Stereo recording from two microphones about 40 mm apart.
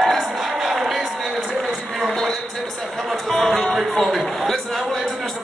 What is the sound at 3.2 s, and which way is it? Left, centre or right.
Music, centre.